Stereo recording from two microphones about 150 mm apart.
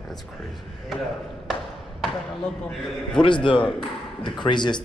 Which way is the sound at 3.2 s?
35° left (ahead or behind).